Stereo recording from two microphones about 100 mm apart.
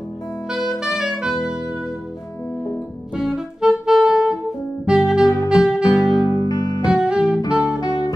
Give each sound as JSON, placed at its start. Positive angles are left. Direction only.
{"t": 0.5, "sound": "saxophone", "side_deg": -5}
{"t": 3.2, "sound": "saxophone", "side_deg": -5}
{"t": 4.8, "sound": "music", "side_deg": -10}
{"t": 5.2, "sound": "music", "side_deg": 35}
{"t": 5.5, "sound": "music", "side_deg": -5}
{"t": 6.4, "sound": "music", "side_deg": 45}
{"t": 6.8, "sound": "music", "side_deg": -10}
{"t": 7.8, "sound": "music", "side_deg": 45}